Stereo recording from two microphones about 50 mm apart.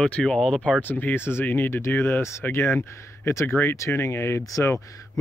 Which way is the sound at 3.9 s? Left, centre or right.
Left.